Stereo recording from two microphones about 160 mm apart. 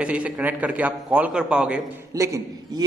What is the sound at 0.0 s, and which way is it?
A man's voice, 10° right (ahead or behind).